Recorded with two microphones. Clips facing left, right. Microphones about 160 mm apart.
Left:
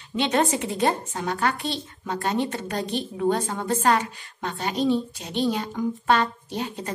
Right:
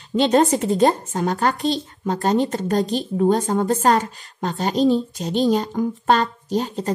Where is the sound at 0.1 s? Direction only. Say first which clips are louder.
Right 6 dB; 40° right (ahead or behind).